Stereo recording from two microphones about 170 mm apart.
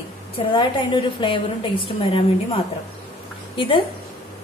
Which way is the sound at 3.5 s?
30° left (ahead or behind).